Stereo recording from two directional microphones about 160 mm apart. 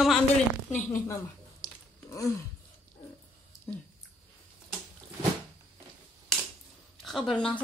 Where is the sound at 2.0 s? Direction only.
20° left (ahead or behind).